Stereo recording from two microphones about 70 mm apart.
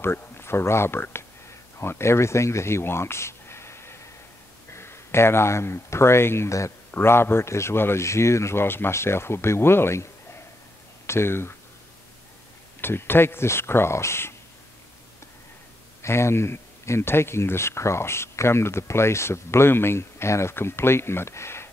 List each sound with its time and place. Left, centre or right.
0.0 s speech: left
11.1 s speech: left
12.8 s speech: left
16.0 s speech: left